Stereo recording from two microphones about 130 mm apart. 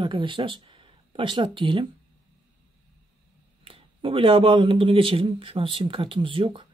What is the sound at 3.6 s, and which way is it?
Speech, 45° right (ahead or behind).